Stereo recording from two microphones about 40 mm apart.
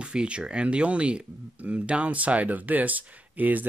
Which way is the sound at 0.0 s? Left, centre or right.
Right.